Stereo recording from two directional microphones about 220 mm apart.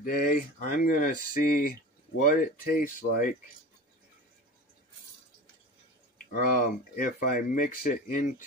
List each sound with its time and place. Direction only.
0.0 s speech: 40° left (ahead or behind)
6.3 s speech: 40° left (ahead or behind)